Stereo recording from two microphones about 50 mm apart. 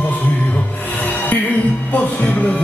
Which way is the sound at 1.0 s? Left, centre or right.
Left.